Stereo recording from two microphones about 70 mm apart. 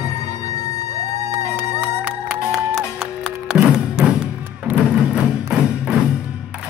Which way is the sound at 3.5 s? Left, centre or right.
Centre.